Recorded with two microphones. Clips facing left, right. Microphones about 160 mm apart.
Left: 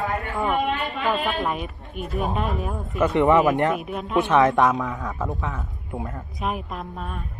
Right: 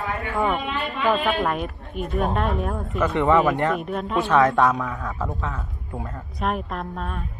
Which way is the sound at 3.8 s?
5° left (ahead or behind).